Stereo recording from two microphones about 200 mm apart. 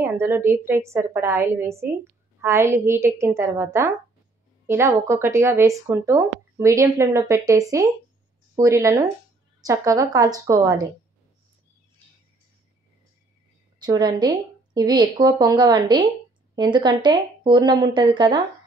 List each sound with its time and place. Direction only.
0.0 s speech: 10° right (ahead or behind)
13.7 s a woman's voice: 20° right (ahead or behind)